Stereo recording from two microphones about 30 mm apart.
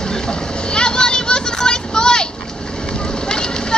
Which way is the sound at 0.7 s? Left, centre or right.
Left.